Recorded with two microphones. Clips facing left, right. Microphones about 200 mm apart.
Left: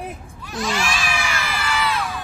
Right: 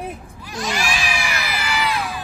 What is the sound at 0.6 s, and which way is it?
Crowd, 15° right (ahead or behind).